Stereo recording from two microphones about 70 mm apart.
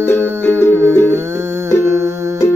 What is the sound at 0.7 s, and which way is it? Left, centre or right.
Music, right.